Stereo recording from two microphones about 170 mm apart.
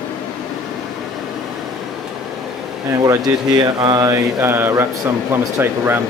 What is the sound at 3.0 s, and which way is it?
Speech, 20° right (ahead or behind).